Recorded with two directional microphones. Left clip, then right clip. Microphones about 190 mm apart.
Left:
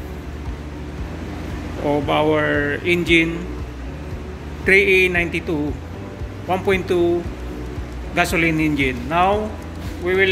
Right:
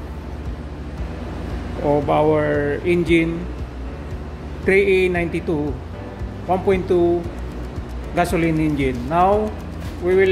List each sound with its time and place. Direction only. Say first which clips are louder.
1.9 s speech: right 1 dB; 15° right (ahead or behind)
4.6 s speech: left 2 dB; 15° right (ahead or behind)
8.1 s speech: left 1 dB; 15° right (ahead or behind)